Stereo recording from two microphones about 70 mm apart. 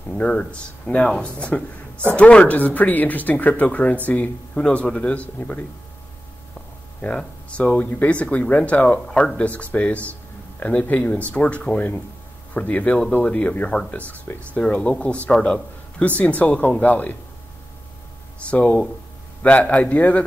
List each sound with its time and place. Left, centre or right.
0.1 s speech: centre
7.0 s a man's voice: centre
18.4 s speech: centre